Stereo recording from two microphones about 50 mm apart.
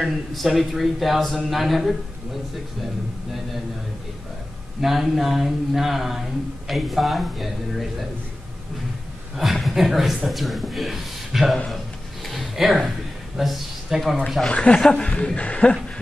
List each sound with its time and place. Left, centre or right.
0.3 s a man's voice: centre
4.8 s a man's voice: centre
9.4 s a man's voice: centre
11.7 s a sound: centre
13.4 s speech: centre
14.5 s a man's voice: left